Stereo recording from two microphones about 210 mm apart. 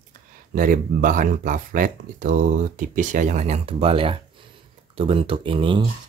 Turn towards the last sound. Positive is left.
turn(degrees=-25)  # may be behind; listen again after turning